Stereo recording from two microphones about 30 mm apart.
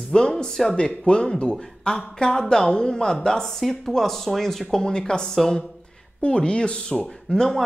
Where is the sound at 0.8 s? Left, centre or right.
Left.